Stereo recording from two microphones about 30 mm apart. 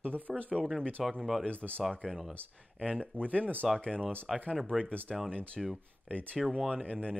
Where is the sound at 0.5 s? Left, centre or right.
Centre.